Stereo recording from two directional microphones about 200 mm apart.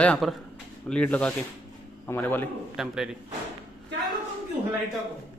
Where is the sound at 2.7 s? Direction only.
Centre (ahead or behind).